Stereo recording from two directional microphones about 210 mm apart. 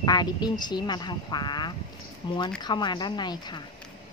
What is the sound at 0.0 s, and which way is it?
Speech, 20° left (ahead or behind).